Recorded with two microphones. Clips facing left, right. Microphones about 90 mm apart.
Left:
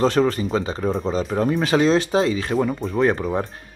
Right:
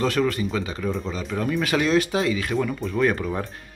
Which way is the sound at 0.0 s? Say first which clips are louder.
Left 4 dB; 30° left (ahead or behind).